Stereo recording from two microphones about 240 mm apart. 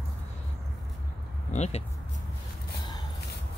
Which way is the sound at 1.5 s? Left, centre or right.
Left.